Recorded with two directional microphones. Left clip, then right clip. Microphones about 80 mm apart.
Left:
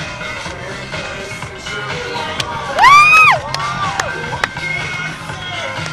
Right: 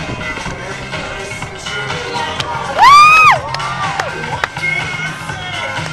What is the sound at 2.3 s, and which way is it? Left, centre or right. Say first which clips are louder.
Music: even; left.